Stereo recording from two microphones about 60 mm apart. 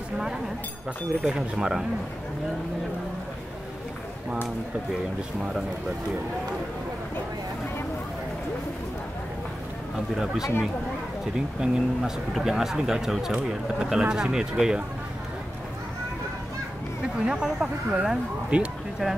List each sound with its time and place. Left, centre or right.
1.2 s speech: centre
10.1 s speech: centre
17.2 s speech: centre